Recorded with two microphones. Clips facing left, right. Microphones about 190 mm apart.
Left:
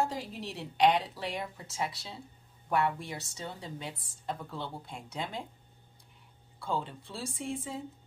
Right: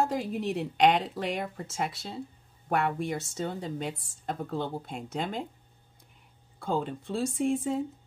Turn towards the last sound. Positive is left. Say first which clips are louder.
# right 10 dB
turn(degrees=-50)  # may be behind; listen again after turning